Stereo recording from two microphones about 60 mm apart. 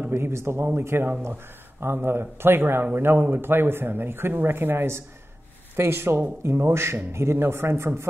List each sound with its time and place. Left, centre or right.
0.1 s speech: right